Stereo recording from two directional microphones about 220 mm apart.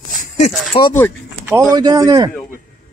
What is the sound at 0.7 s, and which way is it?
Speech, 25° left (ahead or behind).